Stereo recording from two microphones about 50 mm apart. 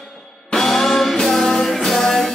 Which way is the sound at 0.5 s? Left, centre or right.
Centre.